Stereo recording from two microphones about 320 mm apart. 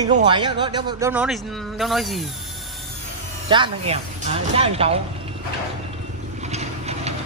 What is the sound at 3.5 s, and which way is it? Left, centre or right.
Speech, centre.